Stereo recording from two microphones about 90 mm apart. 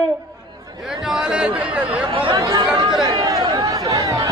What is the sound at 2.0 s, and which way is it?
Speech, 90° right.